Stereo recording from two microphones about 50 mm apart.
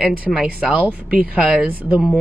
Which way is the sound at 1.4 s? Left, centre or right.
Centre.